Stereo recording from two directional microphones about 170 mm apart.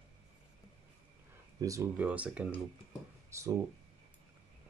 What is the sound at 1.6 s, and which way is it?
Speech, 15° right (ahead or behind).